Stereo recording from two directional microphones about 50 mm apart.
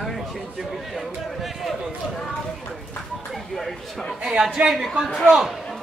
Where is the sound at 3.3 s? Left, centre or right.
Centre.